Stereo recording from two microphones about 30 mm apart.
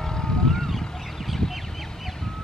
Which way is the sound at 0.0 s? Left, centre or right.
Left.